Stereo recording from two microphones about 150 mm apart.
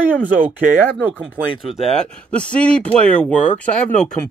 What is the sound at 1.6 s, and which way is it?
Speech, centre (ahead or behind).